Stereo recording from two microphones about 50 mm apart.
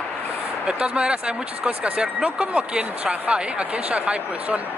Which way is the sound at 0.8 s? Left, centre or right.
Right.